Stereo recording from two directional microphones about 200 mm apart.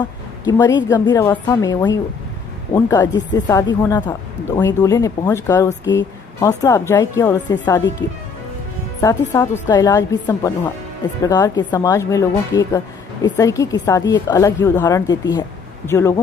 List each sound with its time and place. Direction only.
0.0 s a woman's voice: 20° left (ahead or behind)
3.1 s speech: 65° left (ahead or behind)
3.3 s a woman's voice: 20° left (ahead or behind)
9.0 s a woman's voice: 15° left (ahead or behind)